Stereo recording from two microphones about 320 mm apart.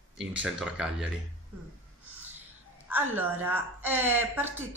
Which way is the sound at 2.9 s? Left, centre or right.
Centre.